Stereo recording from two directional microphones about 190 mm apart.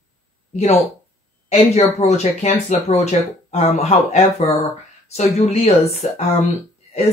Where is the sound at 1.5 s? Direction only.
35° left (ahead or behind).